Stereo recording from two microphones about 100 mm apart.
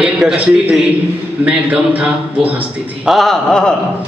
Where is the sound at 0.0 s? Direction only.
5° right (ahead or behind).